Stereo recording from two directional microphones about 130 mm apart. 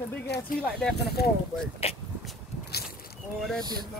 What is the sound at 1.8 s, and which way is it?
Speech, 50° left (ahead or behind).